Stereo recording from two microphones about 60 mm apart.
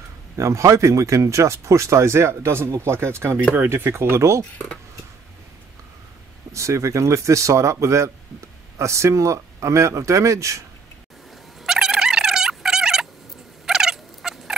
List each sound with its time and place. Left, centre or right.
0.4 s speech: right
6.5 s speech: right
11.6 s a sound: centre
13.7 s turkey: centre